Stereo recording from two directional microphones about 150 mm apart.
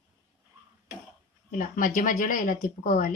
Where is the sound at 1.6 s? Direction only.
65° left (ahead or behind).